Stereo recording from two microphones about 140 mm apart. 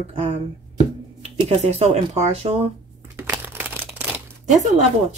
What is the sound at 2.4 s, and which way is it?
Speech, 45° right (ahead or behind).